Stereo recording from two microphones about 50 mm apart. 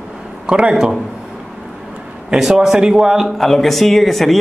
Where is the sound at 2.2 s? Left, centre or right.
Centre.